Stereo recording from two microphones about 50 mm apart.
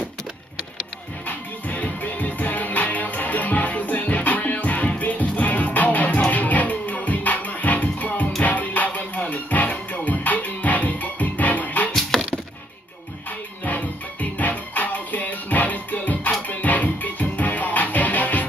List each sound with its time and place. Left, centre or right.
1.2 s music: left
11.9 s a sound: centre
13.7 s music: left